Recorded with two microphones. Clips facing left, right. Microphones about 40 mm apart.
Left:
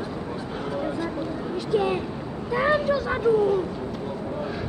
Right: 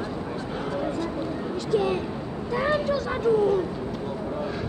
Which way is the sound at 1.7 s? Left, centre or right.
Centre.